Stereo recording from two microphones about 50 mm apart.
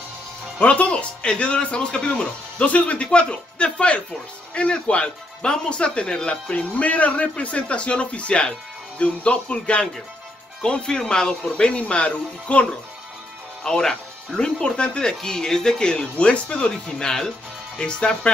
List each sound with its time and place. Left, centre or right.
0.6 s speech: left
6.5 s speech: left
13.7 s speech: centre